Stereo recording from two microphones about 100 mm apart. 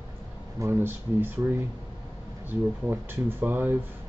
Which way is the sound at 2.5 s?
20° right (ahead or behind).